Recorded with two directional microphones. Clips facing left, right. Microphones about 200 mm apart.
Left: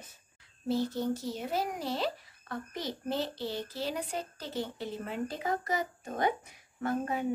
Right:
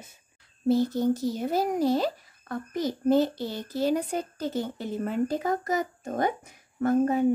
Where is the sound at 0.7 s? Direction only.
40° right (ahead or behind).